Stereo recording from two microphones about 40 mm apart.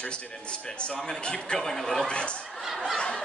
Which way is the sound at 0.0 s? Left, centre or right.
Left.